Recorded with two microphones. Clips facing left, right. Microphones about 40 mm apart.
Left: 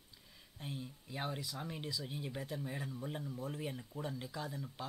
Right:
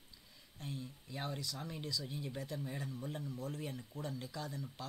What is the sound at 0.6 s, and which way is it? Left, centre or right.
Speech, centre.